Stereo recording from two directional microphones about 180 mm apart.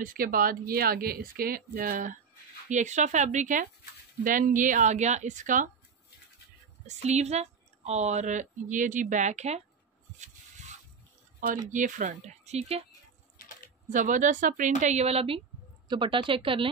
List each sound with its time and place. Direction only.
0.0 s speech: 50° right (ahead or behind)
6.9 s speech: 40° right (ahead or behind)
10.1 s rub: 40° right (ahead or behind)
11.7 s speech: 45° right (ahead or behind)
13.4 s typing: 50° left (ahead or behind)
13.8 s a woman's voice: 45° right (ahead or behind); by 16.7 s 30° right (ahead or behind)